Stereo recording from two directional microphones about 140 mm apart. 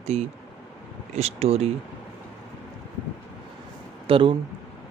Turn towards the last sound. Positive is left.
turn(degrees=-40)  # may be behind; listen again after turning